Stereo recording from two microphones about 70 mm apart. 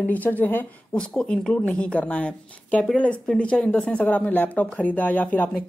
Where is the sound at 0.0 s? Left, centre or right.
Left.